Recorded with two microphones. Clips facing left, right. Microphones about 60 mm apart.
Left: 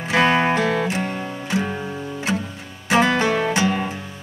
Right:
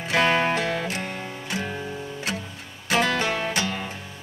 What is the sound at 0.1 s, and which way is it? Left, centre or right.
Music, centre.